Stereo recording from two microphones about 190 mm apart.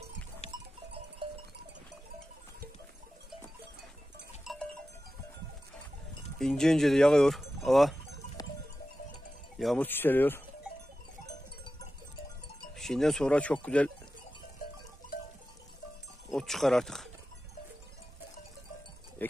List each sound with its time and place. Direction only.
0.5 s goat: 30° right (ahead or behind)
4.5 s goat: centre (ahead or behind)
6.4 s speech: 5° left (ahead or behind)
9.6 s speech: centre (ahead or behind)
12.7 s speech: centre (ahead or behind)
16.3 s speech: centre (ahead or behind)